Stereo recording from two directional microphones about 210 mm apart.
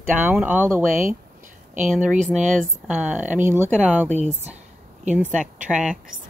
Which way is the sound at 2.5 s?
5° right (ahead or behind).